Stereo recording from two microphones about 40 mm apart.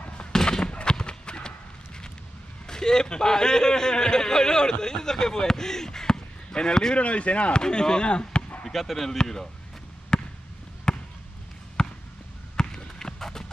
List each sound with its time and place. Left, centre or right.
0.3 s a sound: centre
2.6 s a man's voice: centre
7.0 s speech: left
7.6 s speech: centre
8.6 s speech: centre
10.1 s basketball bounce: centre
12.5 s run: centre